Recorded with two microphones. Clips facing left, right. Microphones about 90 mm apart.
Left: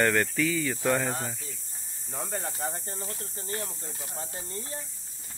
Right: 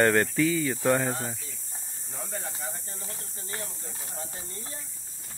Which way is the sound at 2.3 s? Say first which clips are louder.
Left 4 dB; 45° left (ahead or behind).